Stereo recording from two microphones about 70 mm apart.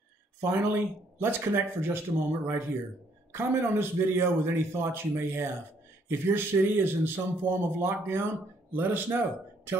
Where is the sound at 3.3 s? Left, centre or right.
Right.